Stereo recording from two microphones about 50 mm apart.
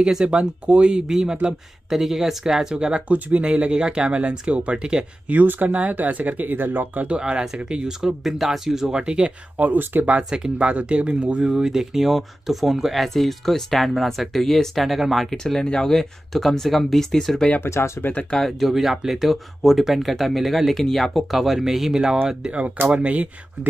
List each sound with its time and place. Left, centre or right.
0.0 s speech: centre
3.1 s speech: right
5.3 s speech: right
7.1 s speech: centre
8.2 s speech: centre
8.9 s speech: centre
9.6 s speech: right
10.3 s speech: centre
11.5 s speech: centre
15.3 s speech: centre
17.6 s speech: left
18.6 s speech: centre
22.3 s speech: right